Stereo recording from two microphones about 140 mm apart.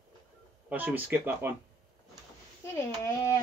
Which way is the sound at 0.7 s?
10° right (ahead or behind).